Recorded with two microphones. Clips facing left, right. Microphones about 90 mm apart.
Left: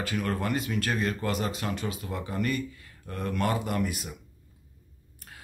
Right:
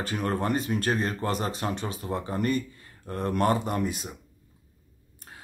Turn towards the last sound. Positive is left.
turn(degrees=-30)  # may be behind; listen again after turning